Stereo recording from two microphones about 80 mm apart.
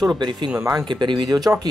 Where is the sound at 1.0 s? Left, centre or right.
Right.